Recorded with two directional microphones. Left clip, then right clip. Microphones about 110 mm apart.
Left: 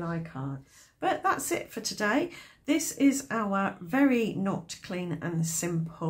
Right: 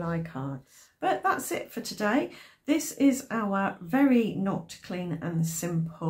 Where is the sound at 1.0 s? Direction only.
25° left (ahead or behind).